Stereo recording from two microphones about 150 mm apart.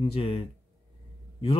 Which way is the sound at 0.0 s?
40° left (ahead or behind).